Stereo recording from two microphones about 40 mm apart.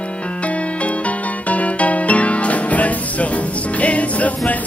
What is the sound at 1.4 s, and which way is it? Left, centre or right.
Music, left.